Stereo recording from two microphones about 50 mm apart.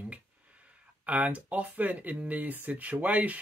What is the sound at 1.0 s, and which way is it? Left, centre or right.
Speech, right.